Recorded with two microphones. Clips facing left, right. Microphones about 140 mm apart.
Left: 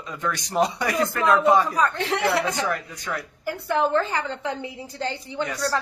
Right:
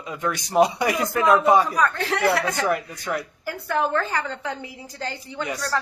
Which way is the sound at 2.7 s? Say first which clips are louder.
Right 4 dB; 15° right (ahead or behind).